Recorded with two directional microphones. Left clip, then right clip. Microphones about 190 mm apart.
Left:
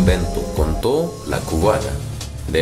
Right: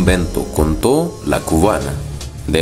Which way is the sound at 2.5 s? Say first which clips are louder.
Right 2 dB; 35° right (ahead or behind).